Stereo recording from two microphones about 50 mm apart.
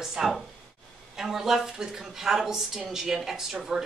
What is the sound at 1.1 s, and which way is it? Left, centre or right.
A woman's voice, centre.